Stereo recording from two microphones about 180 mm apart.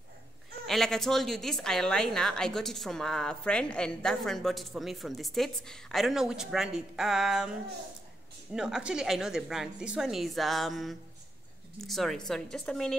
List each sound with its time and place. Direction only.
0.7 s a woman's voice: centre (ahead or behind)
8.5 s a woman's voice: 5° right (ahead or behind)